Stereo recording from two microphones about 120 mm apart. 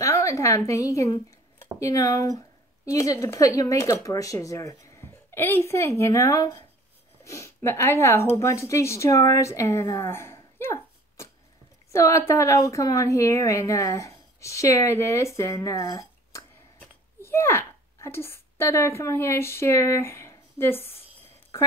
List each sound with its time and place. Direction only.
0.0 s a woman's voice: 25° left (ahead or behind)